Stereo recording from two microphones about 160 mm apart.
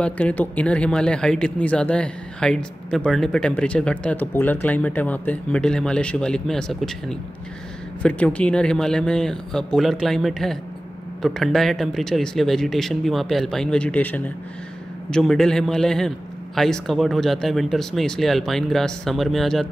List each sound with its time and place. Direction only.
0.0 s speech: 10° left (ahead or behind)